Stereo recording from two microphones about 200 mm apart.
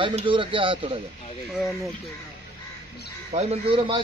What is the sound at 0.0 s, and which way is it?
A man's voice, 25° right (ahead or behind).